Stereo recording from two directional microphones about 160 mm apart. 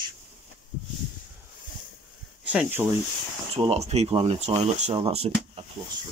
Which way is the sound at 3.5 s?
40° right (ahead or behind).